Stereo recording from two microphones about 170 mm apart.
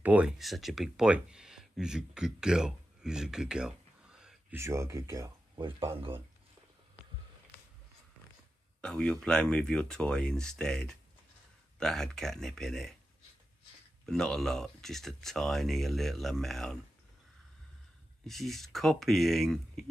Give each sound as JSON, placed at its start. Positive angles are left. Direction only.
{"t": 0.0, "sound": "speech", "side_deg": -10}
{"t": 4.6, "sound": "speech", "side_deg": -15}
{"t": 8.8, "sound": "speech", "side_deg": 5}
{"t": 14.0, "sound": "speech", "side_deg": 5}
{"t": 18.2, "sound": "speech", "side_deg": 0}